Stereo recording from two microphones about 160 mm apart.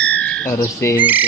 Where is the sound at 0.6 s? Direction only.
15° left (ahead or behind).